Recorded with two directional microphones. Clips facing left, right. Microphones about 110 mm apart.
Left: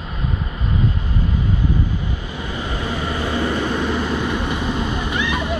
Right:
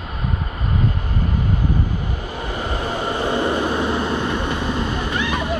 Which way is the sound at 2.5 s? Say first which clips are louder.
Right 1 dB; 45° right (ahead or behind).